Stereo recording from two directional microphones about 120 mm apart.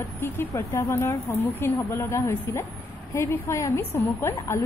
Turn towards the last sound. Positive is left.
turn(degrees=20)  # may be behind; listen again after turning